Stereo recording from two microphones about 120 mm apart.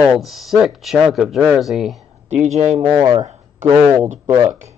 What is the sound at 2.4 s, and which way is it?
Speech, 75° right (ahead or behind).